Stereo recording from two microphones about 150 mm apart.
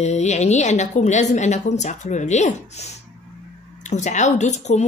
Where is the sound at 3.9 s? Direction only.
50° left (ahead or behind).